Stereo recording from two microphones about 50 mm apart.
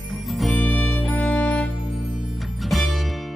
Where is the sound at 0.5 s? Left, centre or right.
Left.